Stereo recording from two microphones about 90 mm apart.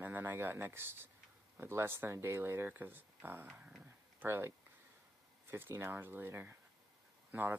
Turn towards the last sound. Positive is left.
turn(degrees=-20)  # may be behind; listen again after turning